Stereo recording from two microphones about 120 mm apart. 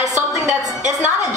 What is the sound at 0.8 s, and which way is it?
Speech, 90° right.